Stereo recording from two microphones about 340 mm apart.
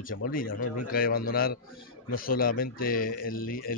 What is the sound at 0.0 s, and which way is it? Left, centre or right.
Speech, left.